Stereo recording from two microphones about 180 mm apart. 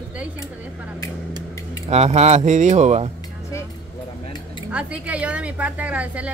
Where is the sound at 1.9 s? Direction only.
35° right (ahead or behind).